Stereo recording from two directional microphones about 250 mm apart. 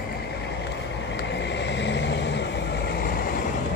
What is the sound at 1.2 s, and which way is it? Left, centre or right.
Vehicle, left.